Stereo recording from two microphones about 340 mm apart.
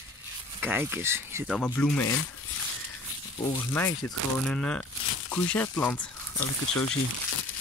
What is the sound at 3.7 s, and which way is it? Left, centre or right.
Speech, centre.